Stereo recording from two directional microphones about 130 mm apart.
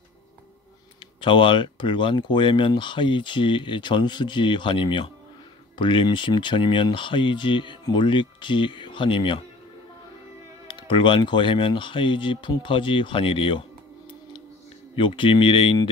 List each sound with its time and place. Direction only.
1.2 s speech: 40° left (ahead or behind)
10.7 s speech: 40° left (ahead or behind)
15.0 s speech: 40° left (ahead or behind)